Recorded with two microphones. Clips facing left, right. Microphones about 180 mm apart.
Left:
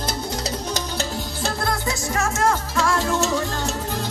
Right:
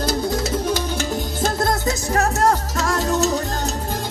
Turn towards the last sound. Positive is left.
turn(degrees=-40)  # may be behind; listen again after turning